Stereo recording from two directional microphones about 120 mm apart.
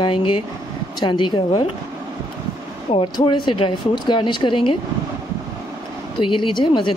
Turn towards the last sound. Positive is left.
turn(degrees=40)  # may be behind; listen again after turning